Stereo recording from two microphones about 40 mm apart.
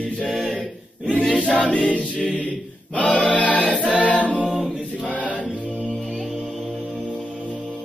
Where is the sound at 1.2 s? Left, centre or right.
Centre.